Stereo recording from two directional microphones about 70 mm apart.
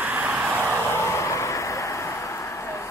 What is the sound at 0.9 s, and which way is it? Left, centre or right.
Vehicle, left.